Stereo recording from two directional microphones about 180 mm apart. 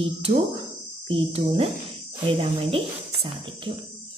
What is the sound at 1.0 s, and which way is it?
A woman's voice, 30° right (ahead or behind).